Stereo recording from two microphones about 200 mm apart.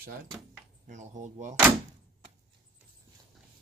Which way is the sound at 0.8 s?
35° right (ahead or behind).